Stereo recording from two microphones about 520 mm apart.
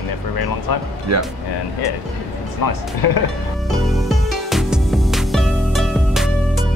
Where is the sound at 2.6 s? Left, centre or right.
Left.